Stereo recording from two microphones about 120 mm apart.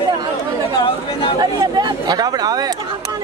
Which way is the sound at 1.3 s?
35° right (ahead or behind).